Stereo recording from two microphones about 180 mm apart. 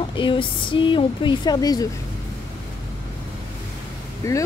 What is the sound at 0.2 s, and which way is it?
Speech, 30° left (ahead or behind).